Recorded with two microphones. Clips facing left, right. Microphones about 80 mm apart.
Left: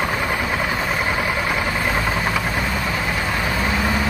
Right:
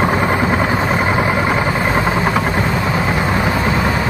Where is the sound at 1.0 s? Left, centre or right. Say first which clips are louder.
Right 6 dB; right.